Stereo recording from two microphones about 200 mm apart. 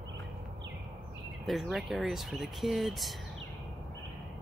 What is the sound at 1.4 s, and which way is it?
Speech, centre (ahead or behind).